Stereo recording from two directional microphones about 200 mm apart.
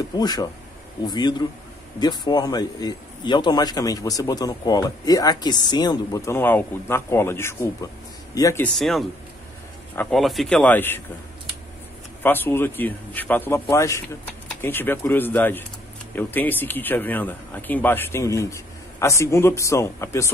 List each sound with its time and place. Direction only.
0.1 s a man's voice: 20° left (ahead or behind)
8.7 s speech: centre (ahead or behind)
12.2 s speech: 10° left (ahead or behind)